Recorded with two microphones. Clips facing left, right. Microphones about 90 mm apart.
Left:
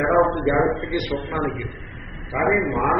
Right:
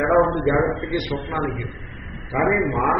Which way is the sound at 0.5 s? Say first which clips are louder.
Even; centre (ahead or behind).